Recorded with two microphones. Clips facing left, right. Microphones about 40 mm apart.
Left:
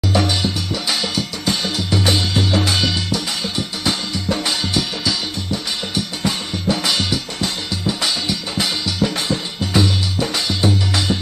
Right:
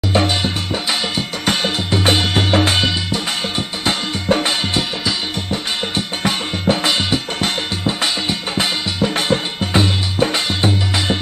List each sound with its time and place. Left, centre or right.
0.1 s music: right
1.4 s music: right
5.5 s drum: right
7.1 s music: right